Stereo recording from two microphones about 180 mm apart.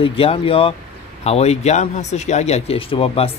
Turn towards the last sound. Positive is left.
turn(degrees=30)  # may be behind; listen again after turning